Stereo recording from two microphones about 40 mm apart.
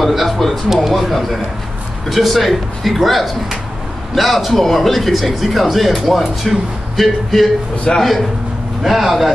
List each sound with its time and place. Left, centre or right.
0.0 s speech: centre
7.9 s a man's voice: centre
8.8 s speech: centre